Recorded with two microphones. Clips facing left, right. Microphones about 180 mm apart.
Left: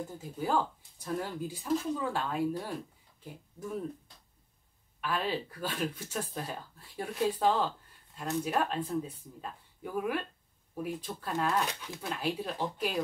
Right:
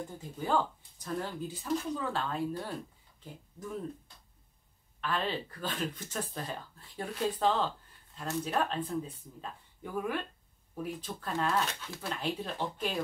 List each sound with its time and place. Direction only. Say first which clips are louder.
0.0 s speech: left 2 dB; 5° left (ahead or behind)
5.0 s speech: left 1 dB; 10° left (ahead or behind)